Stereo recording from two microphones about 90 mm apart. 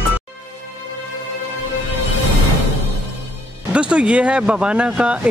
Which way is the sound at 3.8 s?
10° right (ahead or behind).